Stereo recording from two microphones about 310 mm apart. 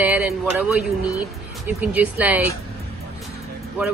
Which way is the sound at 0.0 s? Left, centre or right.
Centre.